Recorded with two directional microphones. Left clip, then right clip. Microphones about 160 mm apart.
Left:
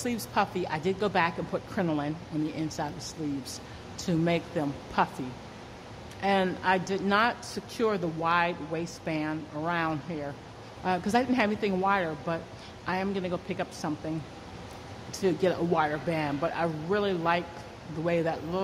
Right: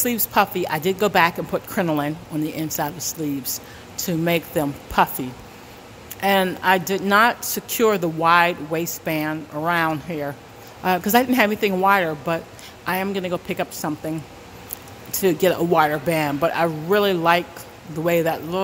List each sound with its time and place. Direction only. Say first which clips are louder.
0.0 s speech: right 9 dB; 25° right (ahead or behind)
6.2 s speech: right 8 dB; 25° right (ahead or behind)